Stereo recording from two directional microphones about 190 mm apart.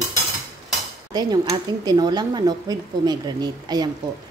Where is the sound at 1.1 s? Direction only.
20° right (ahead or behind).